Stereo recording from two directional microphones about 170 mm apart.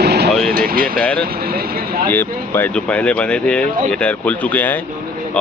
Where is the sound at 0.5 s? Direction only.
60° right (ahead or behind).